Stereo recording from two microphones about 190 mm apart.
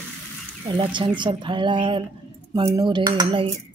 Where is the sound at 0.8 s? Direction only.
25° right (ahead or behind).